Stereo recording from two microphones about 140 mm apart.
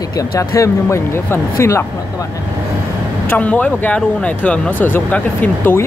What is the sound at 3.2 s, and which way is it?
Speech, 10° left (ahead or behind).